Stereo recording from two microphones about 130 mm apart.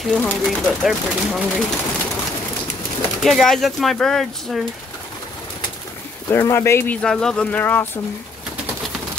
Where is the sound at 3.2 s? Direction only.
Centre (ahead or behind).